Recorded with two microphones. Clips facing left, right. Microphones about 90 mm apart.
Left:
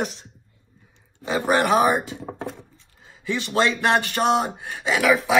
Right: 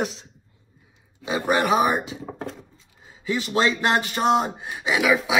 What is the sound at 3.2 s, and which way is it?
Speech, 10° right (ahead or behind).